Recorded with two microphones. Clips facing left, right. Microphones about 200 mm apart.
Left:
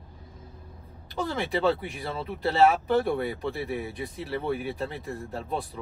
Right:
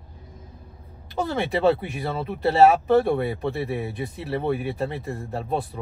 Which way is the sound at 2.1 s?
50° right (ahead or behind).